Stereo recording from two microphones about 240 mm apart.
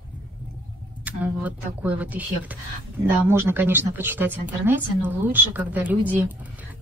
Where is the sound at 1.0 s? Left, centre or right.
Centre.